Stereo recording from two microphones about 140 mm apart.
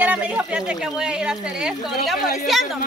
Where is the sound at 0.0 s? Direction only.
10° right (ahead or behind).